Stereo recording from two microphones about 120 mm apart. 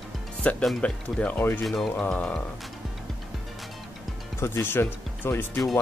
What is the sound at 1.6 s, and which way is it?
Speech, centre (ahead or behind).